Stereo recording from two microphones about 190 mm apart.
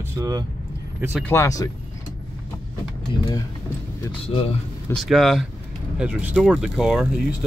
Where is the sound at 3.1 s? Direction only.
25° left (ahead or behind).